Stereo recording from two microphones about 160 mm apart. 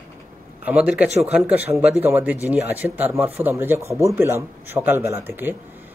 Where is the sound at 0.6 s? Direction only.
10° right (ahead or behind).